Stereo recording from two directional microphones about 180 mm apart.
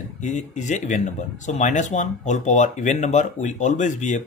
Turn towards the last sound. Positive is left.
turn(degrees=45)  # may be behind; listen again after turning